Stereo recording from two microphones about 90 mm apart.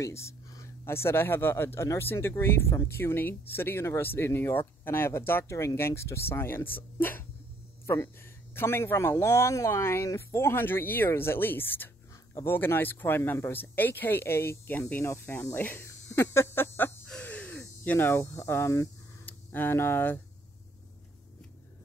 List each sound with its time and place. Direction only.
0.0 s speech: 35° left (ahead or behind)
15.9 s a sound: 30° left (ahead or behind)
19.2 s speech: 20° left (ahead or behind)